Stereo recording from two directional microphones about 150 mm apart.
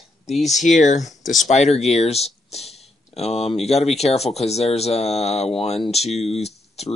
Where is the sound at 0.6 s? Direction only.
55° left (ahead or behind).